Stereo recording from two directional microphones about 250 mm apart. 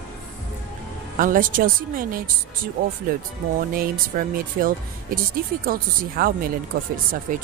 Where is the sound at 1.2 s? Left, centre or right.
Right.